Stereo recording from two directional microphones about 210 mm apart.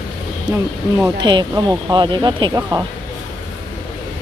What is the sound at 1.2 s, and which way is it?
Speech, 20° right (ahead or behind).